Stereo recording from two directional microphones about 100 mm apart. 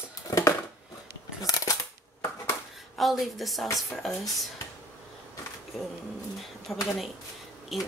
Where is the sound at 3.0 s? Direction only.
Centre (ahead or behind).